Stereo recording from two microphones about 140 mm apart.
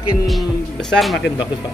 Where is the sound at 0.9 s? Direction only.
Centre (ahead or behind).